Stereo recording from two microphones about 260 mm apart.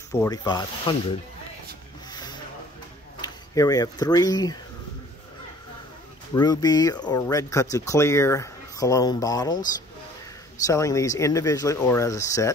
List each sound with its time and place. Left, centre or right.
0.1 s speech: centre
2.0 s a sound: centre
3.2 s speech: centre
6.3 s speech: centre
10.7 s speech: centre